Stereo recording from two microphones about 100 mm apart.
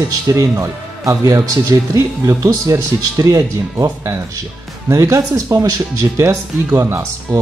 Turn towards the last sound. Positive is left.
turn(degrees=-25)  # may be behind; listen again after turning